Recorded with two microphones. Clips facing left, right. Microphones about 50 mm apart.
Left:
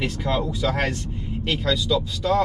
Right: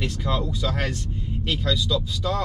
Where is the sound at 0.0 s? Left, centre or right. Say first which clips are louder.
Left 2 dB; centre.